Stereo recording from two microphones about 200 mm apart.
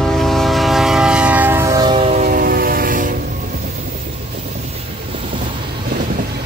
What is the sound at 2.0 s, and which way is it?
Train, 35° right (ahead or behind).